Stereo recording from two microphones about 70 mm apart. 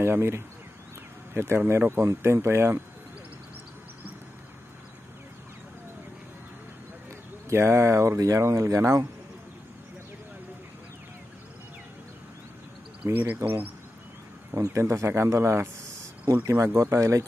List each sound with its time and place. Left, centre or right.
0.0 s speech: right
7.4 s speech: right
13.0 s speech: right
13.4 s speech: right